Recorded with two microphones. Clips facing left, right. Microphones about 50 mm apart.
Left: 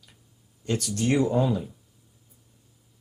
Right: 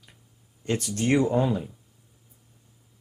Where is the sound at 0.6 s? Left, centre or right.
Right.